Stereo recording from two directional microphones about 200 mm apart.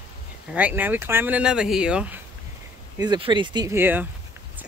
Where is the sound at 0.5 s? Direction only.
10° right (ahead or behind).